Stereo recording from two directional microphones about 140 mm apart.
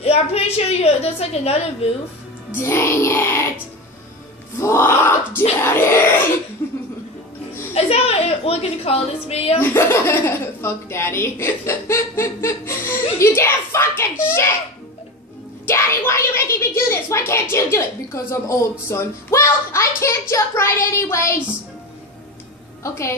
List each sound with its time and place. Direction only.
0.0 s a woman's voice: 45° left (ahead or behind)
2.5 s a woman's voice: 20° left (ahead or behind)
4.6 s a woman's voice: 20° left (ahead or behind)
7.7 s a woman's voice: 45° left (ahead or behind)
9.6 s a woman's voice: 15° left (ahead or behind)
15.6 s a woman's voice: 20° left (ahead or behind)
22.8 s a woman's voice: 20° left (ahead or behind)